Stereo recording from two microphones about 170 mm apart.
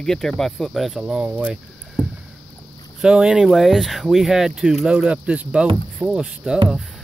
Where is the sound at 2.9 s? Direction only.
5° right (ahead or behind).